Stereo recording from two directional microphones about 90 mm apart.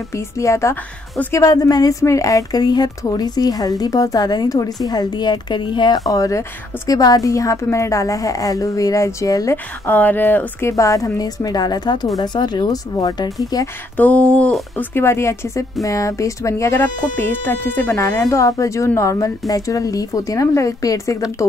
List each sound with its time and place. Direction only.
0.1 s a woman's voice: 35° left (ahead or behind)
9.8 s speech: 20° left (ahead or behind)
10.7 s a woman's voice: 35° left (ahead or behind)
13.9 s speech: 15° left (ahead or behind)
14.8 s speech: 25° left (ahead or behind)